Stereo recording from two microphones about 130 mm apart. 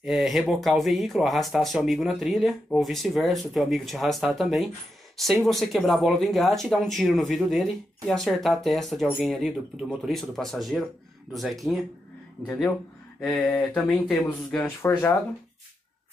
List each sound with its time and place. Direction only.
0.0 s speech: 5° right (ahead or behind)
13.2 s speech: 10° left (ahead or behind)